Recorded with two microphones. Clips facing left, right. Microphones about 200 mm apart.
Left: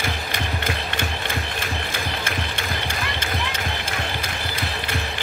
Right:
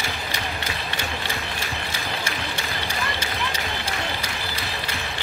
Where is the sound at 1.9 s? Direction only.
50° left (ahead or behind).